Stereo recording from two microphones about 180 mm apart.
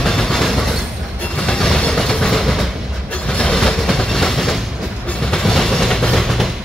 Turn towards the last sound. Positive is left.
turn(degrees=0)  # may be behind; listen again after turning